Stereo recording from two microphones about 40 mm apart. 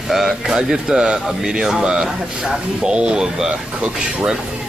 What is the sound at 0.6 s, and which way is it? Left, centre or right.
Speech, centre.